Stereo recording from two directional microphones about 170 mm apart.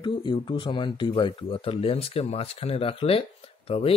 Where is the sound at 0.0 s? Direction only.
30° left (ahead or behind).